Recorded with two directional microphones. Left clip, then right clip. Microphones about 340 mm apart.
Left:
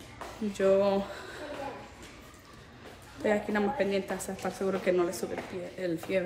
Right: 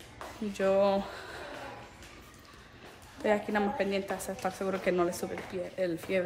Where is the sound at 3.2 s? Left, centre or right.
Centre.